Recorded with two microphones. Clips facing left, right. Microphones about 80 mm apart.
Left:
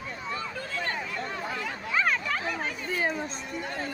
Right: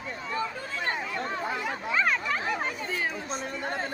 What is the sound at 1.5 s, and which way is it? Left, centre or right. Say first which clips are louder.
Chatter: right 3 dB; right.